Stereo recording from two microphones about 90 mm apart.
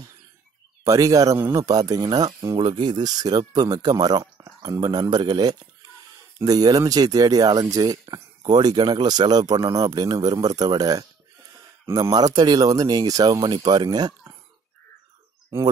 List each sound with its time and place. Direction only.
0.8 s speech: 40° right (ahead or behind)
2.5 s speech: 60° right (ahead or behind)